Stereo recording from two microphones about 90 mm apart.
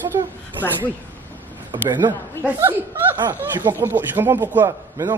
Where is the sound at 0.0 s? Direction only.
25° right (ahead or behind).